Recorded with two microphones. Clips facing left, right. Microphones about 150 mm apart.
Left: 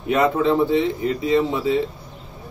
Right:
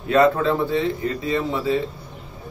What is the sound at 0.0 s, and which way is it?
Speech, 20° left (ahead or behind).